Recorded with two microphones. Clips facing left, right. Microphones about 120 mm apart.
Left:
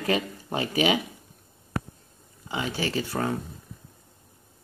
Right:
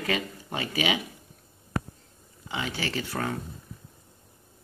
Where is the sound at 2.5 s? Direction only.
20° left (ahead or behind).